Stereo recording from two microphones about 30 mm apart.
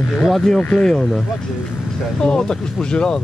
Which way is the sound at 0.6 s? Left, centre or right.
Left.